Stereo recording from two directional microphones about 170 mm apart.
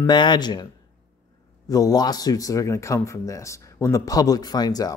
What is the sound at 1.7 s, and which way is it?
Speech, 20° left (ahead or behind).